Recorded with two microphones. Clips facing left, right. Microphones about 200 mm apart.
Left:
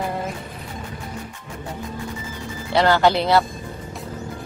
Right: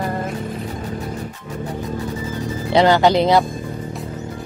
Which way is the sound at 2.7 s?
20° right (ahead or behind).